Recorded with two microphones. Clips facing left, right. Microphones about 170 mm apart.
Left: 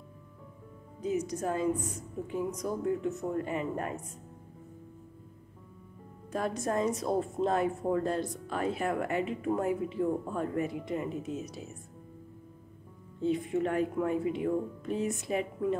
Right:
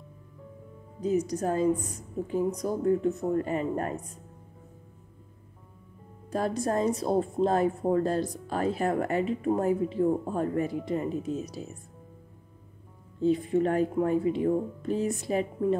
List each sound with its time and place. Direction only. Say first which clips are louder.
1.0 s a woman's voice: right 4 dB; 35° right (ahead or behind)
6.3 s a woman's voice: right 3 dB; 35° right (ahead or behind)
13.2 s a woman's voice: right 5 dB; 35° right (ahead or behind)